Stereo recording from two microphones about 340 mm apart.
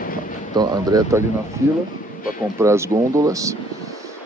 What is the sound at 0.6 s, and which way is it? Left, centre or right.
Speech, centre.